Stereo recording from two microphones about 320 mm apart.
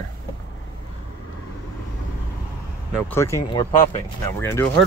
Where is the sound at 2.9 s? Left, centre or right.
Centre.